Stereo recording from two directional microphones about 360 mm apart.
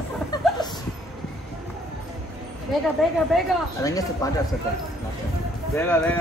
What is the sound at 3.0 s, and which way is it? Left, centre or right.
Speech, centre.